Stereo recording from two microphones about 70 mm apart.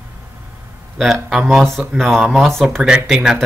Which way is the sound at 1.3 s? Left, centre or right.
Centre.